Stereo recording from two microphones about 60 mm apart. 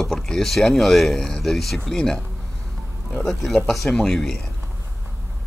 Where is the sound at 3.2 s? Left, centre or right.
Centre.